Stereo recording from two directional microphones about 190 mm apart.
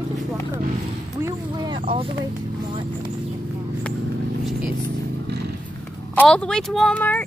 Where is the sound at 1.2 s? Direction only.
20° right (ahead or behind).